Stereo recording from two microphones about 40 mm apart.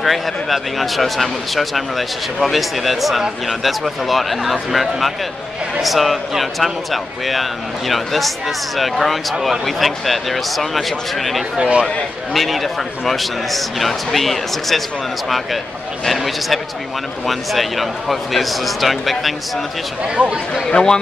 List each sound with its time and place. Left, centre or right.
0.0 s a man's voice: centre
11.5 s a man's voice: right
12.4 s a man's voice: centre
17.3 s a man's voice: centre
20.7 s a man's voice: centre